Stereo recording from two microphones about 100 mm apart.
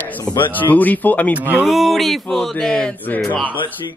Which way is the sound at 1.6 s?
Centre (ahead or behind).